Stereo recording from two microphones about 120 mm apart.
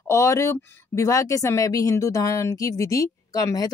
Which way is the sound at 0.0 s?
25° left (ahead or behind).